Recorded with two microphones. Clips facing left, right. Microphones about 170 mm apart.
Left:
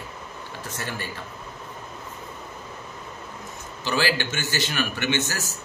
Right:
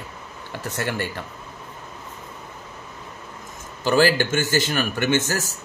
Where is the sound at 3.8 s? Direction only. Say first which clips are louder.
Right 7 dB; 45° right (ahead or behind).